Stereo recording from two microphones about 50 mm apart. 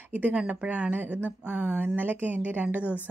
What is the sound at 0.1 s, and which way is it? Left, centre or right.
Speech, right.